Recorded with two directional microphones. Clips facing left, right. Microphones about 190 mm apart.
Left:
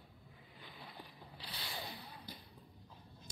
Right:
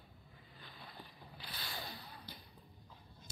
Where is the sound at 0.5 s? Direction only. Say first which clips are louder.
Left 1 dB; 15° left (ahead or behind).